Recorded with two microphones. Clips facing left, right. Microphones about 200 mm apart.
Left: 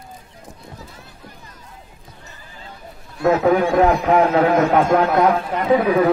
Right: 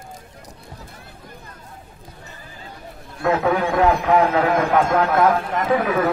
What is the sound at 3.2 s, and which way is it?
A man's voice, 30° left (ahead or behind).